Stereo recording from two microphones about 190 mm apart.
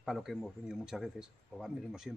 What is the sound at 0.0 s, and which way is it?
A man's voice, centre (ahead or behind).